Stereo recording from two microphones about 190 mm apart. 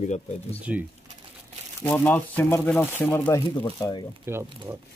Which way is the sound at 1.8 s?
10° left (ahead or behind).